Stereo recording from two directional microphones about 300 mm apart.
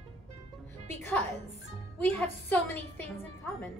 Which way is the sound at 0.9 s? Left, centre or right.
Centre.